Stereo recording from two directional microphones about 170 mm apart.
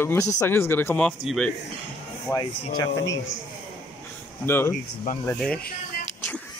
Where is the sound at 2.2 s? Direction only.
20° left (ahead or behind).